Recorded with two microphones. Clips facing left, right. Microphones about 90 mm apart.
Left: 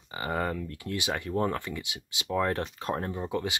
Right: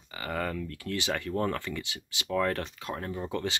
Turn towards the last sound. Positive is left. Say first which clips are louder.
# left 1 dB
turn(degrees=15)  # may be behind; listen again after turning